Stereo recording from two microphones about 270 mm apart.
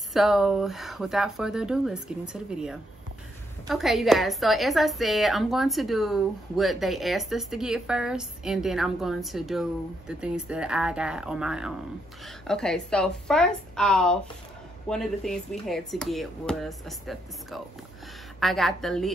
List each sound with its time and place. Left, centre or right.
0.1 s a woman's voice: centre